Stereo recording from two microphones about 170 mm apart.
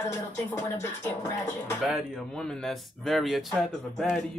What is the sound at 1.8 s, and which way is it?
Speech, centre (ahead or behind).